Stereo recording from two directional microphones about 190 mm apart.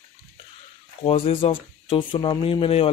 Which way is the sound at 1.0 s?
30° left (ahead or behind).